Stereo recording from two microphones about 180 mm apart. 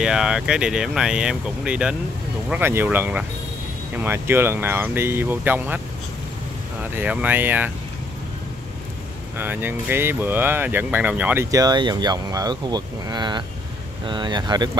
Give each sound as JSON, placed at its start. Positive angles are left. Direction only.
{"t": 0.0, "sound": "speech", "side_deg": -5}
{"t": 6.8, "sound": "speech", "side_deg": -10}
{"t": 9.4, "sound": "speech", "side_deg": -10}